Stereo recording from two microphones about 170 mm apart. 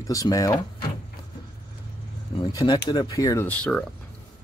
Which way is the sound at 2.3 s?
25° left (ahead or behind).